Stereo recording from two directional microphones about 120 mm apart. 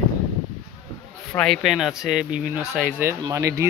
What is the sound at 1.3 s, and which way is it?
Speech, 5° left (ahead or behind).